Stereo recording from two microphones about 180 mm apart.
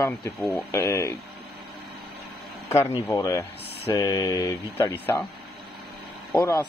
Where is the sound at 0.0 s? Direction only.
15° left (ahead or behind).